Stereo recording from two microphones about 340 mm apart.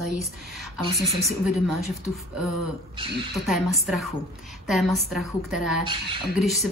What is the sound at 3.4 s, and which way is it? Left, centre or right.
A woman's voice, centre.